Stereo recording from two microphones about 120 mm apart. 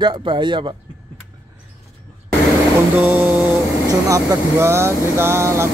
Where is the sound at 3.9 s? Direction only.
25° right (ahead or behind).